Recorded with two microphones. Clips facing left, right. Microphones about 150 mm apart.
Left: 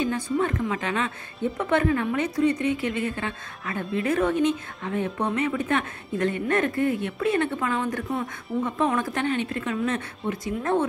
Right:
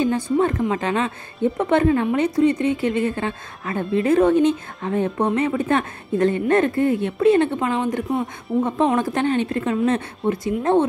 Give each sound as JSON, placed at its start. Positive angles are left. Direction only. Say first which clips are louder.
{"t": 0.0, "sound": "a woman's voice", "louder": "right 6 dB", "side_deg": -35}